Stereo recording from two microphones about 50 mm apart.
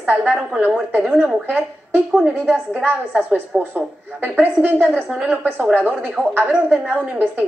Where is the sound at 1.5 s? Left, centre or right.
Right.